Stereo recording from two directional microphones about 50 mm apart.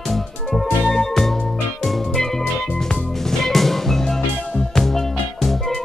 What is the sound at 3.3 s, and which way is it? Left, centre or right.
Music, centre.